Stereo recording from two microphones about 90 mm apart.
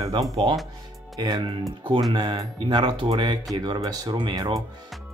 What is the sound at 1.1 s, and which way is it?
Speech, 55° right (ahead or behind).